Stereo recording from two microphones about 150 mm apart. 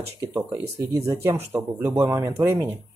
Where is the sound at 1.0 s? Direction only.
15° right (ahead or behind).